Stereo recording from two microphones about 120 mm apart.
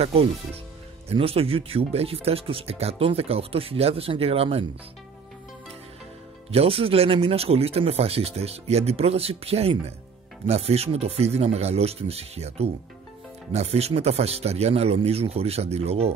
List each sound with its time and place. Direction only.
0.0 s speech: 55° right (ahead or behind)
6.5 s speech: 55° right (ahead or behind)